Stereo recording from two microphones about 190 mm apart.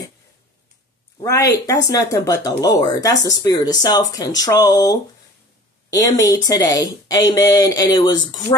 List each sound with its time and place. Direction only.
1.2 s speech: 15° left (ahead or behind)